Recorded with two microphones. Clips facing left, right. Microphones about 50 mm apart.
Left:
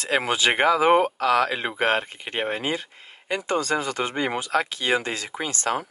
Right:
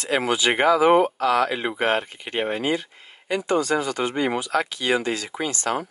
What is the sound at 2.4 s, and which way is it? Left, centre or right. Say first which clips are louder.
Speech: right 3 dB; left.